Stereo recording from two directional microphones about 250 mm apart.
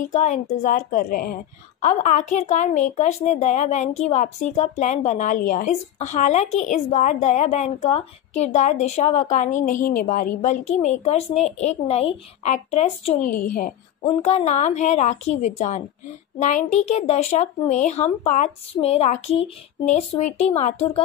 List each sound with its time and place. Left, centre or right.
0.0 s a woman's voice: left